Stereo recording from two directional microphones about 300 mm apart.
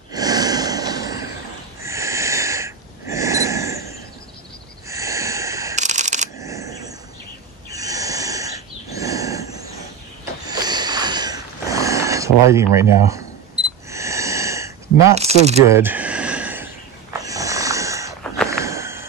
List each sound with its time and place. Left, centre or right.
0.1 s snort: centre
1.8 s wheeze: centre
4.8 s camera: centre
5.8 s shuffling cards: right
6.3 s a sound: centre
15.1 s speech: right
15.6 s a sound: centre
17.2 s snoring: centre
18.6 s a sound: centre